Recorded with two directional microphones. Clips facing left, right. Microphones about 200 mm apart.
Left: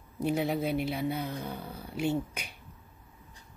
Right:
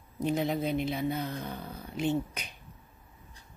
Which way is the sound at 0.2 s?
10° left (ahead or behind).